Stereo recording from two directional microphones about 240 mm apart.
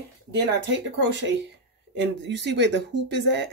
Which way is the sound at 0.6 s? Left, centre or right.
Right.